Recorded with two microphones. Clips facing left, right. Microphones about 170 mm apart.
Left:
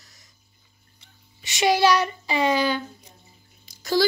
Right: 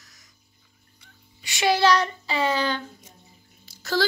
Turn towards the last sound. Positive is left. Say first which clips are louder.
# left 3 dB
turn(degrees=15)  # may be behind; listen again after turning